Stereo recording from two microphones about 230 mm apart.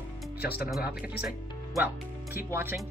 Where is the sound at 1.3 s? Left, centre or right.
Centre.